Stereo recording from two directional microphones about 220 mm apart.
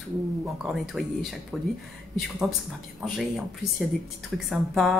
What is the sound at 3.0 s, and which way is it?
Speech, centre (ahead or behind).